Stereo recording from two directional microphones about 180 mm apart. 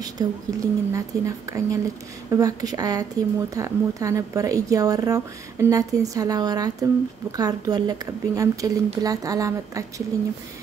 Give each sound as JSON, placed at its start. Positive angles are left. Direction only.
{"t": 0.0, "sound": "a woman's voice", "side_deg": -20}